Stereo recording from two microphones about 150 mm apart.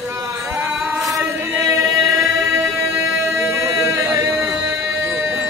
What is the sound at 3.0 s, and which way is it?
Music, 15° right (ahead or behind).